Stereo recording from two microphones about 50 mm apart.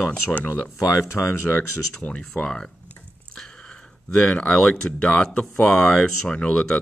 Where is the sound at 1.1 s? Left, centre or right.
Left.